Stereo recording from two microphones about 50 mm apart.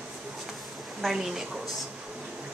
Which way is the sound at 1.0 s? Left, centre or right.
Centre.